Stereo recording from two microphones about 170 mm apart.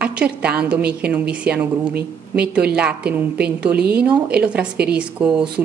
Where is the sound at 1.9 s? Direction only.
70° right (ahead or behind).